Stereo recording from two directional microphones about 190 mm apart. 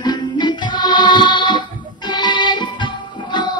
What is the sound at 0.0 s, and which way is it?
Music, 20° left (ahead or behind).